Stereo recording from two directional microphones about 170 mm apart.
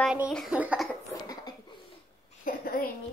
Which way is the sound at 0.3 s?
Centre (ahead or behind).